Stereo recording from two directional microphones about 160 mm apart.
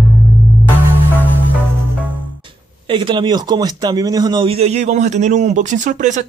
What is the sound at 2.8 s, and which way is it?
Speech, 30° right (ahead or behind).